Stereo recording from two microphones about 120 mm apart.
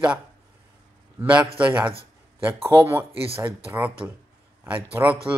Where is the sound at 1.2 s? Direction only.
10° right (ahead or behind).